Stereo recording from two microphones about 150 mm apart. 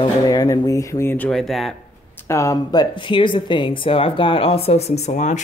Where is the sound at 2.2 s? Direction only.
20° left (ahead or behind).